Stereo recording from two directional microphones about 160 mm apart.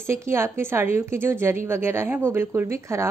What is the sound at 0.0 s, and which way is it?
Speech, 15° right (ahead or behind).